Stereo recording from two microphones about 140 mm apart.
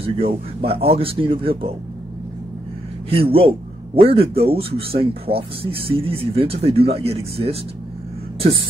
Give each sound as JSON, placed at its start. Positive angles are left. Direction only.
{"t": 0.0, "sound": "speech", "side_deg": -45}
{"t": 3.1, "sound": "a man's voice", "side_deg": -40}